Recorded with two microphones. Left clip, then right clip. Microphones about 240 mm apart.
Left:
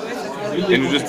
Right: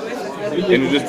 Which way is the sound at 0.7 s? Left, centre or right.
Left.